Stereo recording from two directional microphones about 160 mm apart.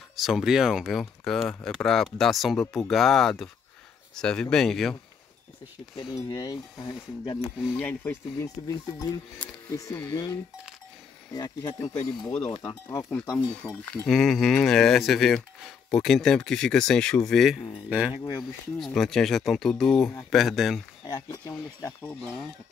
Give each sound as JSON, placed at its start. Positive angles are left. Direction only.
{"t": 0.1, "sound": "speech", "side_deg": 0}
{"t": 6.1, "sound": "cutlery", "side_deg": 25}
{"t": 7.8, "sound": "speech", "side_deg": 15}
{"t": 9.7, "sound": "cutlery", "side_deg": 20}
{"t": 13.1, "sound": "speech", "side_deg": 10}
{"t": 18.8, "sound": "speech", "side_deg": 0}
{"t": 21.3, "sound": "cutlery", "side_deg": 20}
{"t": 22.0, "sound": "speech", "side_deg": 15}